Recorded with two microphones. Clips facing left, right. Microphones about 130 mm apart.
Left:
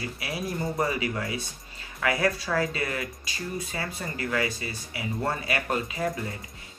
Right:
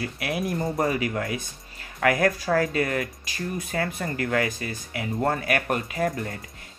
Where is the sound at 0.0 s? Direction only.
55° right (ahead or behind).